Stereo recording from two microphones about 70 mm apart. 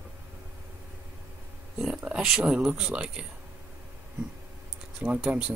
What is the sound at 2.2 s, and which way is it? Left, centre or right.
Speech, centre.